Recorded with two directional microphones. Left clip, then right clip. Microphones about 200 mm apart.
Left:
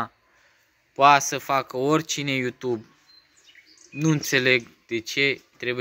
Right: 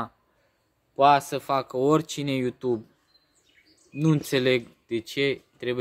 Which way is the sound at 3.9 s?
5° right (ahead or behind).